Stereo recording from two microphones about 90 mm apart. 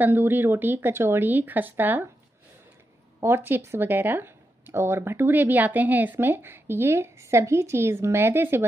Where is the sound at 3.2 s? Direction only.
25° right (ahead or behind).